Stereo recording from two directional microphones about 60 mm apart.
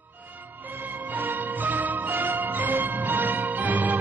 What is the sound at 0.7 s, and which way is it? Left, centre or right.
Music, right.